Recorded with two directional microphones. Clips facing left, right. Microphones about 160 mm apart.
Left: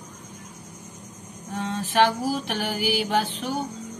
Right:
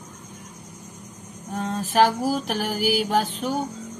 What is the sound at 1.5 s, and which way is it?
Mantra, 40° right (ahead or behind).